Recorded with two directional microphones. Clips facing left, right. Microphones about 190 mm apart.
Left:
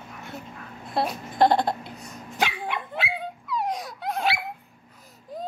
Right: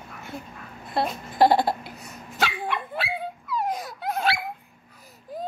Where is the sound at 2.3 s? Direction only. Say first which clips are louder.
Even; 15° left (ahead or behind).